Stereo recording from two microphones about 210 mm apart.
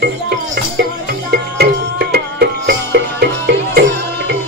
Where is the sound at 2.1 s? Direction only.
50° right (ahead or behind).